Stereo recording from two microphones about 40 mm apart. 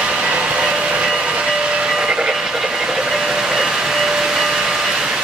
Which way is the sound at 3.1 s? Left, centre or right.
Centre.